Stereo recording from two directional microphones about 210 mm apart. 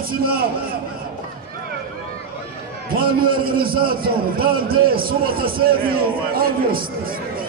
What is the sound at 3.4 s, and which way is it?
A man's voice, 45° right (ahead or behind).